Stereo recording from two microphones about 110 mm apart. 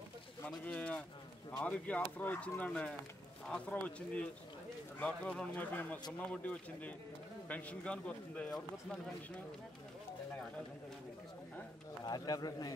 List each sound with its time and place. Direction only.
0.7 s a man's voice: 10° left (ahead or behind)
12.0 s speech: 35° left (ahead or behind)